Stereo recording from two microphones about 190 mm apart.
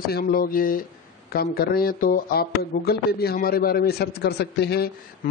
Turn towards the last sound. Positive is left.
turn(degrees=60)  # may be behind; listen again after turning